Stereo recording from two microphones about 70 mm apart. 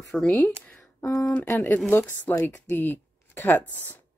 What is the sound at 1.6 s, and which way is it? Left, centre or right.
Speech, left.